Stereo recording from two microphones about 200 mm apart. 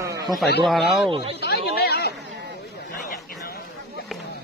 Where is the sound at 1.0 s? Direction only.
25° right (ahead or behind).